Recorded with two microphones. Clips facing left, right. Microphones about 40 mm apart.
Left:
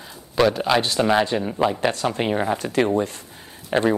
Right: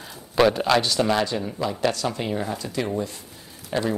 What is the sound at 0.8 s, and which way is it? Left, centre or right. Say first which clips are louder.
Speech: left 3 dB; left.